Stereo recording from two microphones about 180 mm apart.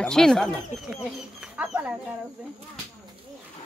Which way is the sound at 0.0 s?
5° left (ahead or behind).